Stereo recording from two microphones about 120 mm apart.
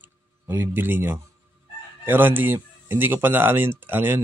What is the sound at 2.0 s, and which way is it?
Speech, 15° right (ahead or behind).